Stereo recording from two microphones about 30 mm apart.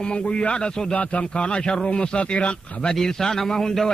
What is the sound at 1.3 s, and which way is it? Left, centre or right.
A man's voice, left.